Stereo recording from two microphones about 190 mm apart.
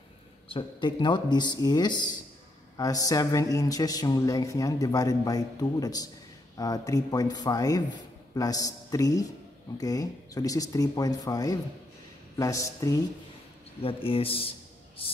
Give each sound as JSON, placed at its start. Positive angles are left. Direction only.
{"t": 0.5, "sound": "speech", "side_deg": 25}
{"t": 13.8, "sound": "speech", "side_deg": 30}